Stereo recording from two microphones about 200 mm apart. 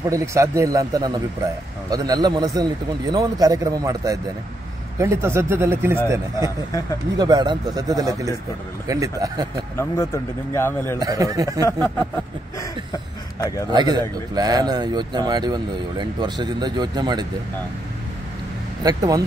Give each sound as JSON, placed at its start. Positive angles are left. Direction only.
{"t": 0.1, "sound": "a man's voice", "side_deg": -15}
{"t": 9.8, "sound": "speech", "side_deg": 15}
{"t": 11.0, "sound": "a man's voice", "side_deg": -20}
{"t": 13.7, "sound": "speech", "side_deg": -20}
{"t": 18.8, "sound": "speech", "side_deg": -20}